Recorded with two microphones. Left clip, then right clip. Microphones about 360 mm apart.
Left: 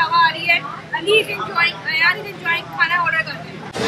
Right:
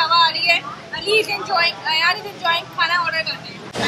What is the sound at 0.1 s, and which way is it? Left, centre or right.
Vehicle, centre.